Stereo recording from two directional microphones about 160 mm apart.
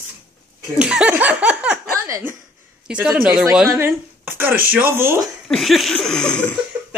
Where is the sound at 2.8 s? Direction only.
5° right (ahead or behind).